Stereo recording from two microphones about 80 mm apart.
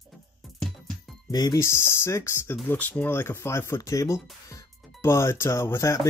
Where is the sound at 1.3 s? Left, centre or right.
Left.